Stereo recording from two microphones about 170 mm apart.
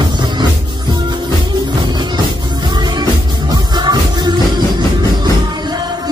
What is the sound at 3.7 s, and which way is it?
Music, 25° right (ahead or behind).